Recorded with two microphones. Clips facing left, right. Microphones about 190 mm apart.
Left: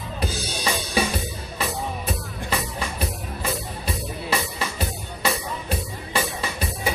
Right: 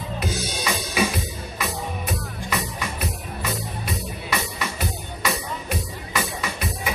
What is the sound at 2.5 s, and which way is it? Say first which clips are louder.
Music: left 1 dB; 30° left (ahead or behind).